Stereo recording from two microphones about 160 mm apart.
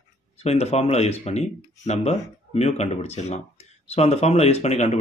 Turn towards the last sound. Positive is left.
turn(degrees=40)  # may be behind; listen again after turning